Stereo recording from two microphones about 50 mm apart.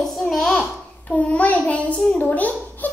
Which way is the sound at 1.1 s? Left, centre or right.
Left.